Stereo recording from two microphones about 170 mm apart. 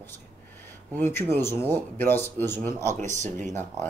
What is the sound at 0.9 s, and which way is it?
Speech, 15° left (ahead or behind).